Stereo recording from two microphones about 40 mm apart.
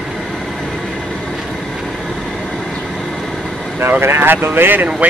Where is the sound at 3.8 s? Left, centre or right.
Right.